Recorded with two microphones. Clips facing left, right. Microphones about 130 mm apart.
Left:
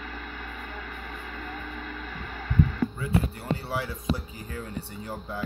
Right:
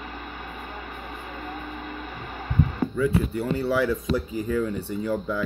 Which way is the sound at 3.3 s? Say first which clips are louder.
Right 7 dB; 90° right.